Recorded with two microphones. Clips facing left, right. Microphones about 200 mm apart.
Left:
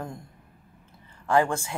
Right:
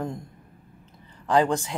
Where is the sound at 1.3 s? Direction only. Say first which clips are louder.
Right 2 dB; 20° right (ahead or behind).